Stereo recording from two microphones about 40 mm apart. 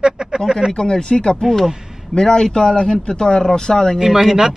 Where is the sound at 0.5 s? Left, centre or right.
Centre.